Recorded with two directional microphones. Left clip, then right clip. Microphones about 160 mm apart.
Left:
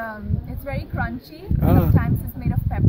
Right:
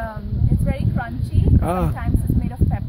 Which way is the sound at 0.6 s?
10° right (ahead or behind).